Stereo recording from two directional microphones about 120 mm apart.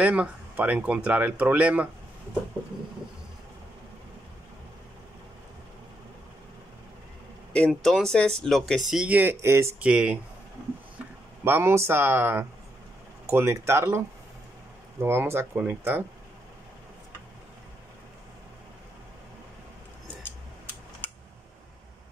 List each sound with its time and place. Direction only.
0.0 s speech: 10° right (ahead or behind)
7.5 s speech: 5° left (ahead or behind); by 9.8 s 20° right (ahead or behind)
9.8 s speech: 10° right (ahead or behind)
11.4 s speech: 20° right (ahead or behind)
21.0 s a sound: 15° left (ahead or behind)